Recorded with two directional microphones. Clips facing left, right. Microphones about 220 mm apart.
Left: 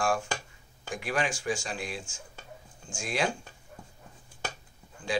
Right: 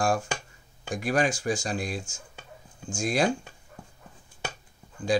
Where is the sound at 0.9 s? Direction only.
40° right (ahead or behind).